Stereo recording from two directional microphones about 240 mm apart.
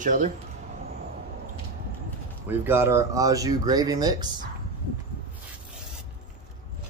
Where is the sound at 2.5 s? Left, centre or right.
Centre.